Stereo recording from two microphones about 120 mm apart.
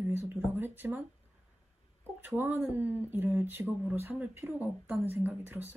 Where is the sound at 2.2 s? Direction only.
20° right (ahead or behind).